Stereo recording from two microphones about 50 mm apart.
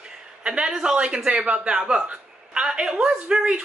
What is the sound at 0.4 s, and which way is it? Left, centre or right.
A man's voice, centre.